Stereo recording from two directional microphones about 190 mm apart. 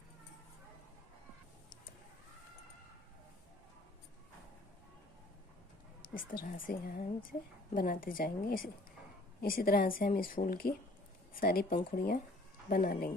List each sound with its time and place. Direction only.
6.1 s speech: 45° left (ahead or behind)